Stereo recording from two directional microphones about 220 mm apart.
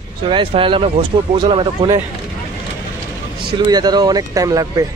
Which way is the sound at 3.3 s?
20° right (ahead or behind).